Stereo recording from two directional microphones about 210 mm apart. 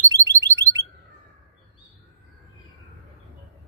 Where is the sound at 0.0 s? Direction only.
15° right (ahead or behind).